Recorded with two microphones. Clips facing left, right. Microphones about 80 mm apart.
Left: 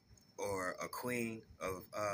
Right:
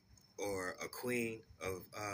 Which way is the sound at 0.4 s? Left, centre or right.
Left.